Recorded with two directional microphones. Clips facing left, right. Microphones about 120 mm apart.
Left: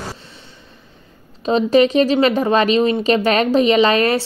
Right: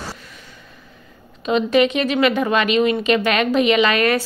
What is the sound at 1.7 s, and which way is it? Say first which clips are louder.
Speech: left 5 dB; 35° left (ahead or behind).